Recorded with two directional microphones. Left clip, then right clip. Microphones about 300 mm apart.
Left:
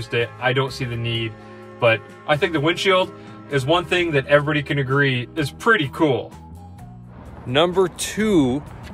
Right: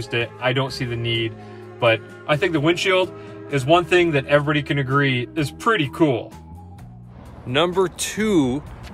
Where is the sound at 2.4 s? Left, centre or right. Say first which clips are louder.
Right 2 dB; centre.